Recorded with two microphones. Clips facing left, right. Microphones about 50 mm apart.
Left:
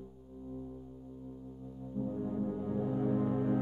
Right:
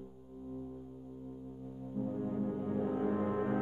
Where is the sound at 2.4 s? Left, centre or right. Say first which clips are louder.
Even; right.